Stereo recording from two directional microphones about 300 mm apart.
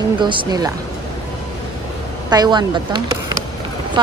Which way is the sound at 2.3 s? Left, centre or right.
Centre.